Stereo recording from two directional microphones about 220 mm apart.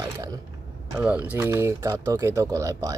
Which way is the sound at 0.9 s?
5° right (ahead or behind).